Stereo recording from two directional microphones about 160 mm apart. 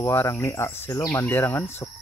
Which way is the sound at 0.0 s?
15° left (ahead or behind).